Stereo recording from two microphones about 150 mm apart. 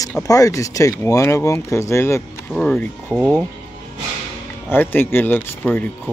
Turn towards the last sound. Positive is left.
turn(degrees=10)  # may be behind; listen again after turning